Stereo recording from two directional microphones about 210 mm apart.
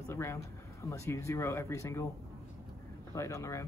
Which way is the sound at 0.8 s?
15° left (ahead or behind).